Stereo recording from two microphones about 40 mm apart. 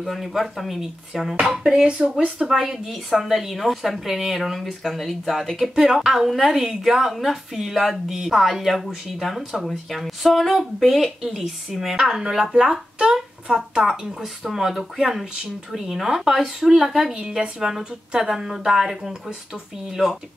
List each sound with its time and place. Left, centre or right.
0.0 s speech: centre
1.6 s speech: right
2.4 s a woman's voice: centre
17.1 s a woman's voice: right